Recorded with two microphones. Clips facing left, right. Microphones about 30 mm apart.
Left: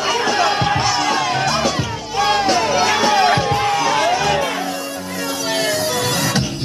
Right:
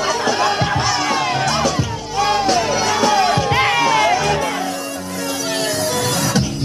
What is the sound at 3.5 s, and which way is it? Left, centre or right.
Music, right.